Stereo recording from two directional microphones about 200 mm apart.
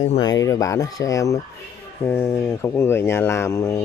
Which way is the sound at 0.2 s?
20° left (ahead or behind).